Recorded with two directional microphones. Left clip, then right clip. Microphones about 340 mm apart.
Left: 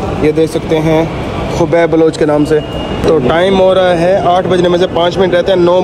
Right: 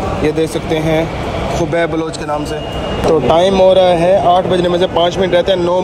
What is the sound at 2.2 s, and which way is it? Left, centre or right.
Speech, left.